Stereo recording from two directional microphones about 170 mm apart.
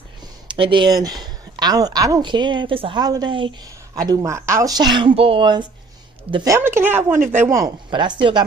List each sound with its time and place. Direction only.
0.5 s speech: 30° right (ahead or behind)